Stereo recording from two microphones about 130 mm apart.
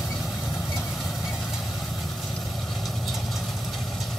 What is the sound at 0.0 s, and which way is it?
Vehicle, centre (ahead or behind).